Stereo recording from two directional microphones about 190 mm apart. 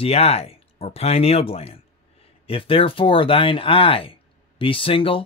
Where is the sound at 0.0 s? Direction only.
30° left (ahead or behind).